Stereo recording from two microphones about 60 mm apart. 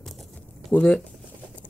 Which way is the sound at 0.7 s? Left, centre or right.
Left.